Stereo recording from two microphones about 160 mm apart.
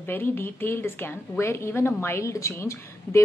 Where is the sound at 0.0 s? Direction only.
15° left (ahead or behind).